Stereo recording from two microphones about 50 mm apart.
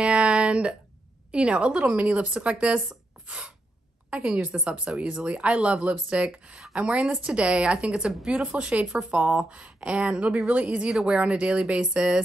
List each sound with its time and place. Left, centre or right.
0.0 s a woman's voice: right
3.3 s gasp: right
4.1 s a woman's voice: right
6.5 s a woman's voice: centre
6.8 s a woman's voice: right